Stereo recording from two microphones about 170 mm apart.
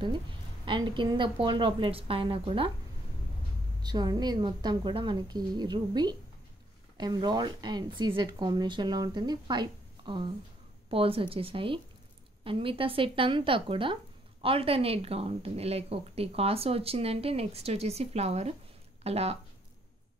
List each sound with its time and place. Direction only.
0.7 s speech: 25° right (ahead or behind)
3.8 s a woman's voice: 25° right (ahead or behind)